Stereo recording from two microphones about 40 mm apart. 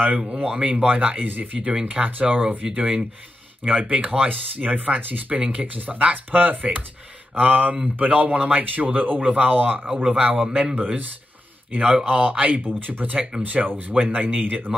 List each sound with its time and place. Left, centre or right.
0.2 s speech: right
1.6 s speech: centre
2.0 s speech: right
2.6 s speech: right
4.3 s speech: right
5.4 s speech: right
5.7 s speech: right
9.8 s speech: right